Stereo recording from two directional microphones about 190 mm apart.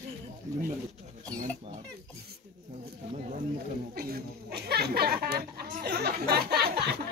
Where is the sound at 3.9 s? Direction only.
55° right (ahead or behind).